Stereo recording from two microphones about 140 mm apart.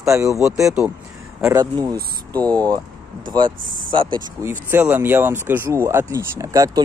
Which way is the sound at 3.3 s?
35° right (ahead or behind).